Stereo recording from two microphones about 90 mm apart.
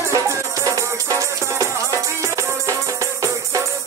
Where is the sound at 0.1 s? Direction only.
35° right (ahead or behind).